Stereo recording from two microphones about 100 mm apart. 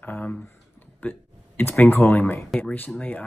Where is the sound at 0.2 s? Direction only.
10° left (ahead or behind).